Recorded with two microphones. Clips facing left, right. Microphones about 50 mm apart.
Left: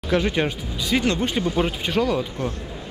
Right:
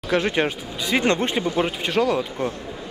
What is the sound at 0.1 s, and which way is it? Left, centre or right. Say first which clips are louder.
Speech: even; centre.